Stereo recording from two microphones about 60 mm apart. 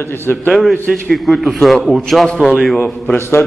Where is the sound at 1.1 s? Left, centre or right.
Centre.